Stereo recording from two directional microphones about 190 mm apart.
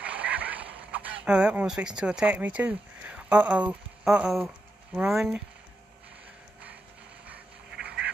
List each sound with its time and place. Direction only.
0.0 s speech: 5° right (ahead or behind)
7.7 s duck: 60° right (ahead or behind)